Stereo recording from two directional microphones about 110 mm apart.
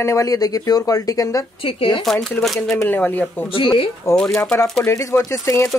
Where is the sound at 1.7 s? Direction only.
55° left (ahead or behind).